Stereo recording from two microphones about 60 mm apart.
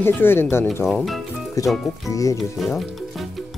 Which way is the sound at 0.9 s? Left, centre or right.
Centre.